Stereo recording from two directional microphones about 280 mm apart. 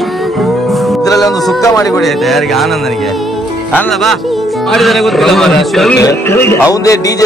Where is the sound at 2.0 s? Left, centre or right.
Centre.